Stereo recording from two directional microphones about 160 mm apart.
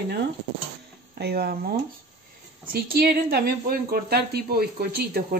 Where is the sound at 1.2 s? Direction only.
85° right.